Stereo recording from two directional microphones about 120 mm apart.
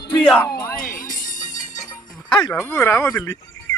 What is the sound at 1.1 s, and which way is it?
Music, 90° left.